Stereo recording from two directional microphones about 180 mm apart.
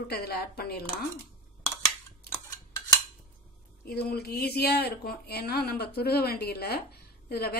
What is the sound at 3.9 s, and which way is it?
A woman's voice, 60° left (ahead or behind).